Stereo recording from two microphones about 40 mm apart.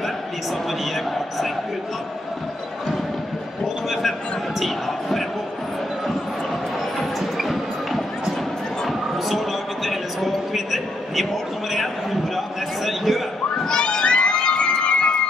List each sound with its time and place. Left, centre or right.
4.6 s basketball bounce: centre
7.0 s music: centre
9.8 s a sound: centre
13.7 s crowd: centre